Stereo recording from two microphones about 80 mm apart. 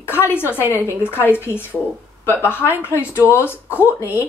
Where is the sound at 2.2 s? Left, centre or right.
Left.